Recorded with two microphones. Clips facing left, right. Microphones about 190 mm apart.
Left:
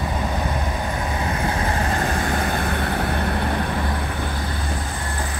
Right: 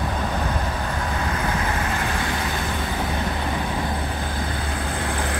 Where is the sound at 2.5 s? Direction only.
60° left (ahead or behind).